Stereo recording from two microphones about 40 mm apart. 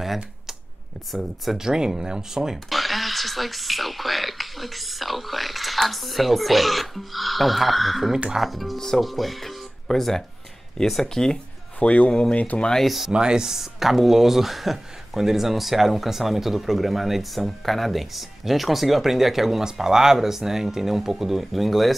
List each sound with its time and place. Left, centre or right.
0.0 s a sound: centre
1.1 s speech: centre
1.6 s speech: centre
2.7 s speech: centre
8.7 s speech: centre
9.0 s speech: centre
11.8 s speech: left
12.1 s speech: left
12.7 s speech: centre
13.1 s speech: centre